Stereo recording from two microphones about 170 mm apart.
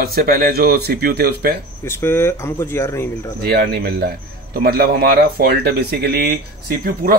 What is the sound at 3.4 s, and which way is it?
Speech, 70° right (ahead or behind).